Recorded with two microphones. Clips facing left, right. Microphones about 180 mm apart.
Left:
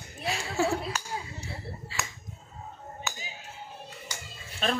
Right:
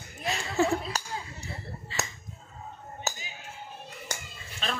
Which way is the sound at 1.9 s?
10° left (ahead or behind).